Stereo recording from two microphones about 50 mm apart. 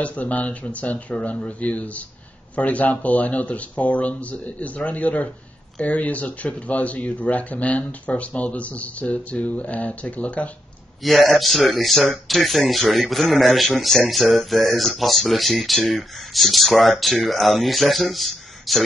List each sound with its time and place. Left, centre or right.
0.0 s speech: left
11.1 s a man's voice: centre